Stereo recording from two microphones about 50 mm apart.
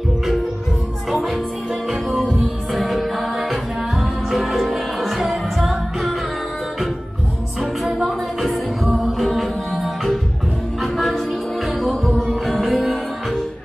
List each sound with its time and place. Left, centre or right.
1.1 s music: centre
7.8 s a capella: centre
9.2 s music: centre
12.1 s music: centre
12.4 s music: centre